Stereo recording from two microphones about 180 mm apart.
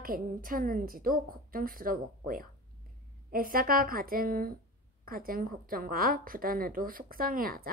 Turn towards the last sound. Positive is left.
turn(degrees=-55)  # may be behind; listen again after turning